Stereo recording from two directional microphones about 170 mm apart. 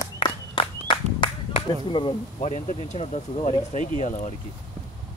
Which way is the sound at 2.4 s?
45° left (ahead or behind).